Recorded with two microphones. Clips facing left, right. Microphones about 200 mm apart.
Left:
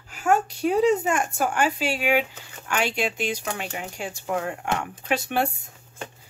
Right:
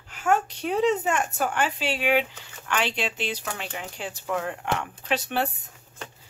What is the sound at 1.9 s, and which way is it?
Speech, 10° left (ahead or behind).